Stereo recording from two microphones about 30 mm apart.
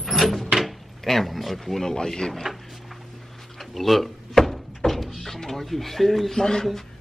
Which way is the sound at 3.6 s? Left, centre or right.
Centre.